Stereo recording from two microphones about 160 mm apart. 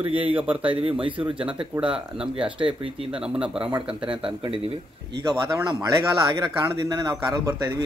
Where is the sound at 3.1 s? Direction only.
5° right (ahead or behind).